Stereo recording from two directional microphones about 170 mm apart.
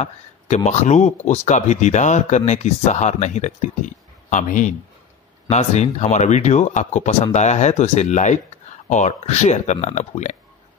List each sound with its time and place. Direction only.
0.7 s speech: 45° left (ahead or behind)